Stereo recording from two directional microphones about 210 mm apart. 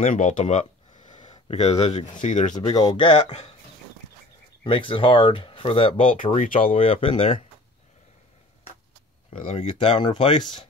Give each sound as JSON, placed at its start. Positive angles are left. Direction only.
{"t": 0.0, "sound": "a sound", "side_deg": 40}
{"t": 1.3, "sound": "speech", "side_deg": 30}
{"t": 2.2, "sound": "speech", "side_deg": 35}
{"t": 2.5, "sound": "speech", "side_deg": 20}
{"t": 4.6, "sound": "speech", "side_deg": 25}
{"t": 6.2, "sound": "speech", "side_deg": 35}
{"t": 9.3, "sound": "speech", "side_deg": 25}